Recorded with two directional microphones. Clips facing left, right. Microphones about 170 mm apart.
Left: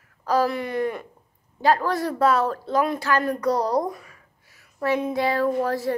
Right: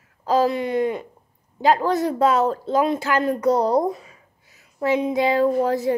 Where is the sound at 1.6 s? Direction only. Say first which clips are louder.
Right 3 dB; 20° right (ahead or behind).